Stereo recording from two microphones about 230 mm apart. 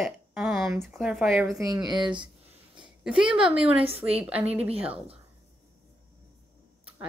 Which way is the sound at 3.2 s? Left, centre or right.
Centre.